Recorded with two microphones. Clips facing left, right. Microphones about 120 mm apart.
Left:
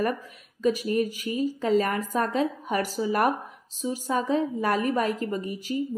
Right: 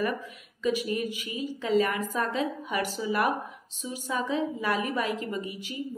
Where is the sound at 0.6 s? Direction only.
40° left (ahead or behind).